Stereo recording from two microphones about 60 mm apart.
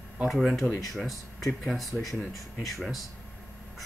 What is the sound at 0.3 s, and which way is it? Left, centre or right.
Speech, centre.